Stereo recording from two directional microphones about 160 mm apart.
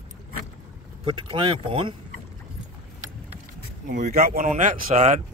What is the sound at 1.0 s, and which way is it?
Speech, 30° right (ahead or behind).